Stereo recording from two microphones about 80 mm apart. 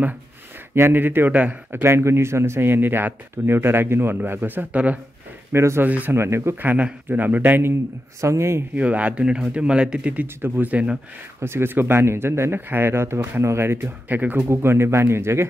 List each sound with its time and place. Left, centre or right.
0.7 s a man's voice: right
5.5 s speech: right
5.9 s a man's voice: centre
6.1 s speech: right
6.6 s a man's voice: right
8.2 s speech: right
8.7 s speech: centre
10.2 s a man's voice: right
11.4 s speech: right
14.5 s speech: right